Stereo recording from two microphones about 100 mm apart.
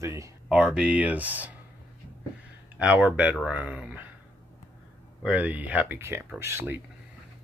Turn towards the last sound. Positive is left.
turn(degrees=-25)  # may be behind; listen again after turning